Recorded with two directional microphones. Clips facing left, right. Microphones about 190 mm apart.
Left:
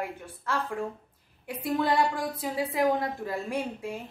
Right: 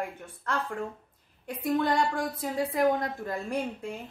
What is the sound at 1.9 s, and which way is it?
A woman's voice, centre (ahead or behind).